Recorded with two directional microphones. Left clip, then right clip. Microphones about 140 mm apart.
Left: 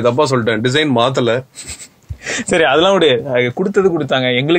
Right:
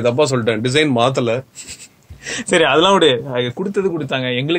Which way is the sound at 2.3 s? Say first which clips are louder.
Left 1 dB; 35° left (ahead or behind).